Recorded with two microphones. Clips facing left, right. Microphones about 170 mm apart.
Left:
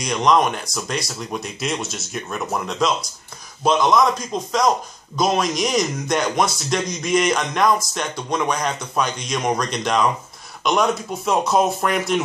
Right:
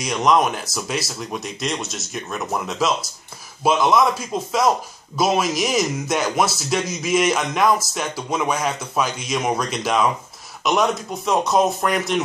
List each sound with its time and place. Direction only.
0.0 s a man's voice: centre (ahead or behind)